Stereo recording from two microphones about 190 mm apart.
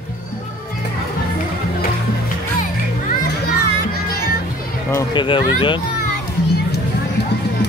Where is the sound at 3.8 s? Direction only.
50° left (ahead or behind).